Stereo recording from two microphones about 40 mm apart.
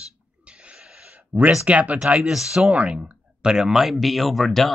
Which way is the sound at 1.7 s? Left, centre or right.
Right.